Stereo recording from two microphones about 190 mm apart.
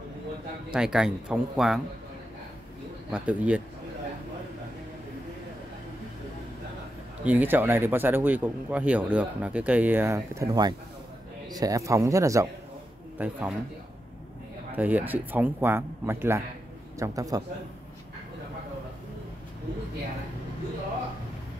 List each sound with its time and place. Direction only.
0.7 s speech: 5° right (ahead or behind)
3.1 s speech: 5° right (ahead or behind)
7.2 s speech: 10° right (ahead or behind)
14.8 s speech: 10° right (ahead or behind)